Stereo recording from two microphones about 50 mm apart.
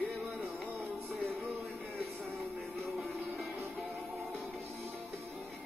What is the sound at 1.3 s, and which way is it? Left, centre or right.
Music, centre.